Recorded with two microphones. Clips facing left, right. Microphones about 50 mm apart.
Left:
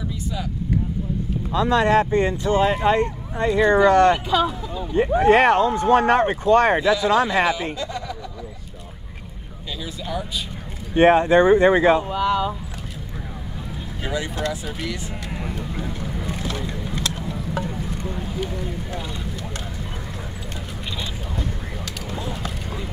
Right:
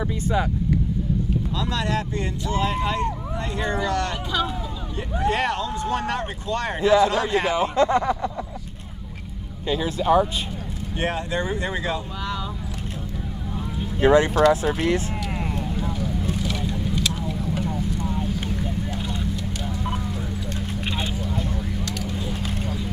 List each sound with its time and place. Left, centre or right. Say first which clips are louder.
0.0 s vehicle: right 5 dB; right
1.5 s speech: left 12 dB; left
6.8 s speech: even; right
9.7 s speech: right 10 dB; right
11.0 s speech: left 12 dB; left
14.0 s speech: right 10 dB; right
16.3 s boat: right 1 dB; left